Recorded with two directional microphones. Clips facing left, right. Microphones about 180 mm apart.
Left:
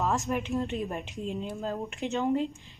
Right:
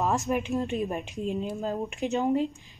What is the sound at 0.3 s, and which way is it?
A woman's voice, 20° right (ahead or behind).